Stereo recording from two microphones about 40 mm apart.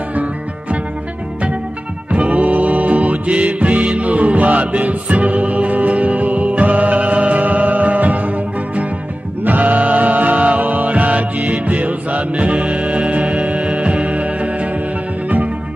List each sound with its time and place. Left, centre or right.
0.1 s music: right
2.0 s music: right
9.4 s music: right